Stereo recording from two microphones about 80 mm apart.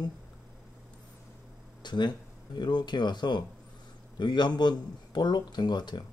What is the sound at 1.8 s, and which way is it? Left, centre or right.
Speech, left.